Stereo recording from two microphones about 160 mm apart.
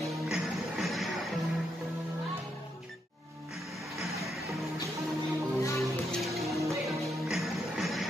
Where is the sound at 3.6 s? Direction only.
Centre (ahead or behind).